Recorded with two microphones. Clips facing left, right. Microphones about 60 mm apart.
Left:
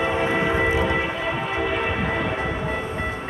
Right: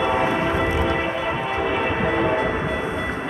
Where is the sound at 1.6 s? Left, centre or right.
Centre.